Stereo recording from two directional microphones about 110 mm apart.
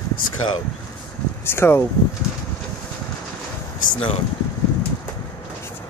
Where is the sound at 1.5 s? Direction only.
20° left (ahead or behind).